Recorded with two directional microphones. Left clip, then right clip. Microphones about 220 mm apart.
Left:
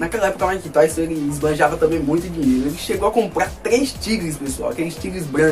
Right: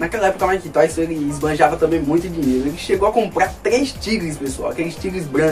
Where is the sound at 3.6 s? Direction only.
15° left (ahead or behind).